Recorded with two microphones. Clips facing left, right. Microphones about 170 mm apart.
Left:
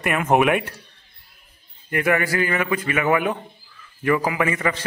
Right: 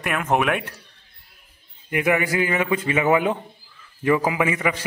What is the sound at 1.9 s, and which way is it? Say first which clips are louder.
A man's voice: even; 15° right (ahead or behind).